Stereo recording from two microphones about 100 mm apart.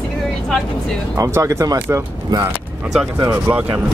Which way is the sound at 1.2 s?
30° right (ahead or behind).